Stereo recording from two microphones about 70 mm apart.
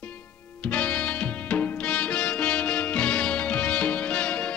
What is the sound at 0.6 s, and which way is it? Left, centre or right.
Music, centre.